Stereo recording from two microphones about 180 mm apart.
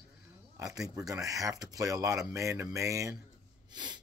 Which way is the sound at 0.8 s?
20° right (ahead or behind).